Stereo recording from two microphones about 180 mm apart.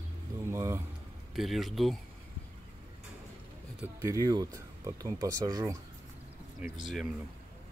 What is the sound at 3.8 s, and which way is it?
Speech, 15° right (ahead or behind).